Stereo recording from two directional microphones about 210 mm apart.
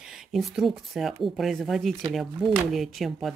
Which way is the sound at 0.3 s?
Centre (ahead or behind).